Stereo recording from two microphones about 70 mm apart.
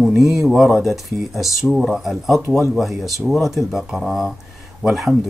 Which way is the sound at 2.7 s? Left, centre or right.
Centre.